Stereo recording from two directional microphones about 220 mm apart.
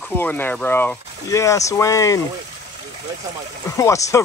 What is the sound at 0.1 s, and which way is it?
Speech, 10° left (ahead or behind).